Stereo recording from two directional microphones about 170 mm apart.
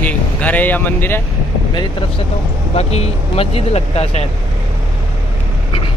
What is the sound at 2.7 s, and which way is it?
Speech, 35° left (ahead or behind).